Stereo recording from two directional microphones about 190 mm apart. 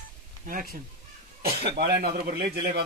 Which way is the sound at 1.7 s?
55° right (ahead or behind).